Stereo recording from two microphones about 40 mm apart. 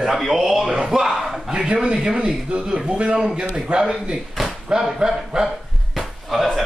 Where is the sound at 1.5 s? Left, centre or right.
Right.